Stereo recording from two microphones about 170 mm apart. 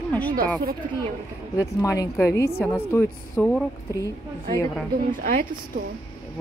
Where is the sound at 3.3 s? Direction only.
5° left (ahead or behind).